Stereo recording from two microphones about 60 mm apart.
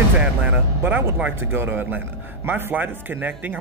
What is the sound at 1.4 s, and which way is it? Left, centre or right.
Speech, right.